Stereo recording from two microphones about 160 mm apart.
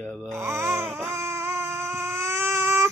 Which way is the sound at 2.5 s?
15° right (ahead or behind).